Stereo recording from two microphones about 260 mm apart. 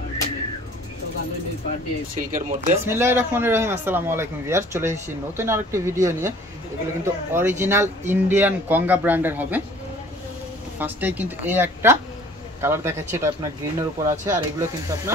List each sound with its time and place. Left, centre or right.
2.1 s speech: right
2.8 s a man's voice: centre
10.8 s a man's voice: centre